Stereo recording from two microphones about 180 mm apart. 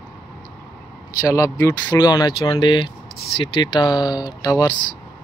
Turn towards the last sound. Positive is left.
turn(degrees=20)  # may be behind; listen again after turning